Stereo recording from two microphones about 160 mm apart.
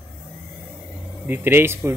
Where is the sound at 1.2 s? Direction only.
15° right (ahead or behind).